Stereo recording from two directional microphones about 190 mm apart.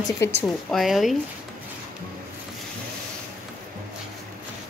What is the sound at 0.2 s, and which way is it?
Speech, 15° left (ahead or behind).